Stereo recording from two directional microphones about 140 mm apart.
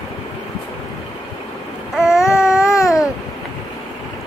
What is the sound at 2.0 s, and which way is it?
Baby cry, 5° right (ahead or behind).